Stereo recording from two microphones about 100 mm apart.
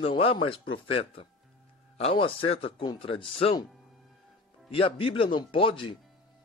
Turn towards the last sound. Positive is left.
turn(degrees=60)  # may be behind; listen again after turning